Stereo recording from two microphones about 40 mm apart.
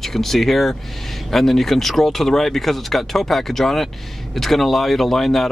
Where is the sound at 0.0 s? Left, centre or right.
Centre.